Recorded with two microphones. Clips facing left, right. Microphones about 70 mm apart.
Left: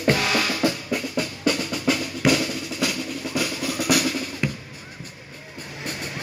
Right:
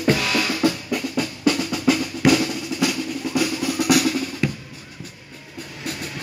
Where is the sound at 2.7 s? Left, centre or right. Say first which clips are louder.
Right 3 dB; centre.